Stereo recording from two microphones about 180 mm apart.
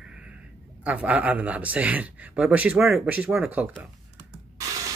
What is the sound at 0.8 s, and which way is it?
Speech, 5° right (ahead or behind).